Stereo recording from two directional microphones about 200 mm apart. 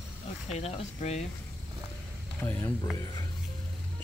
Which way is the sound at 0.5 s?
30° left (ahead or behind).